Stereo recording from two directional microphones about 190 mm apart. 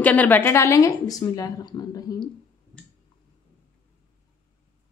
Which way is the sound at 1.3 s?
20° left (ahead or behind).